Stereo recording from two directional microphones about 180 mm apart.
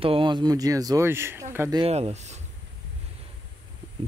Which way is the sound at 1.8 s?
35° right (ahead or behind).